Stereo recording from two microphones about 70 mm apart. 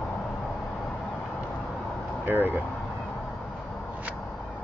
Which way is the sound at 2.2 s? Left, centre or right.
Right.